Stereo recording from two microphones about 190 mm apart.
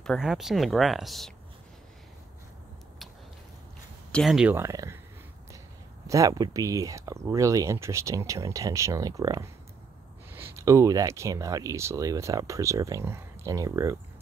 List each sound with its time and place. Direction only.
0.0 s speech: centre (ahead or behind)
4.1 s speech: centre (ahead or behind)
6.0 s speech: 15° right (ahead or behind)